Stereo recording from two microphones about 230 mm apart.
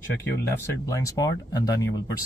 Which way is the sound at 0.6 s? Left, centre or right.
Centre.